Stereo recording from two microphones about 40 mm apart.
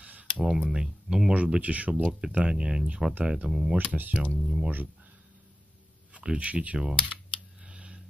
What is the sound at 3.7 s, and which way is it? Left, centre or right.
Speech, right.